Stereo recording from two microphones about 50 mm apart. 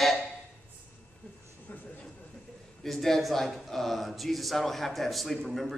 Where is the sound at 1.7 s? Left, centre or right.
Left.